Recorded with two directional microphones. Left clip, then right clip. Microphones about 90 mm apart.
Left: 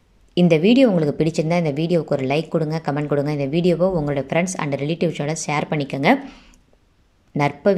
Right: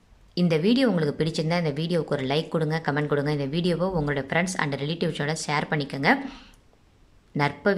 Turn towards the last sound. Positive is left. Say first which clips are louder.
# left 5 dB
turn(degrees=30)  # may be behind; listen again after turning